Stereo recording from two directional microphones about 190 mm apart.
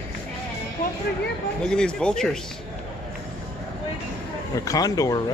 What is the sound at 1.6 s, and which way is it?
Speech, 5° left (ahead or behind).